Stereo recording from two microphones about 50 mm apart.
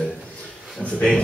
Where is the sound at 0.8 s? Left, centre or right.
Left.